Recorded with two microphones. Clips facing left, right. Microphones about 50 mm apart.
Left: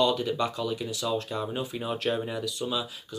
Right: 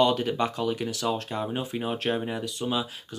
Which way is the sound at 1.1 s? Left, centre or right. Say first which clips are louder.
Even; right.